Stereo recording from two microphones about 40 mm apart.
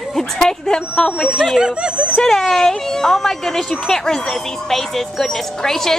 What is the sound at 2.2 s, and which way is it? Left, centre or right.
Speech, centre.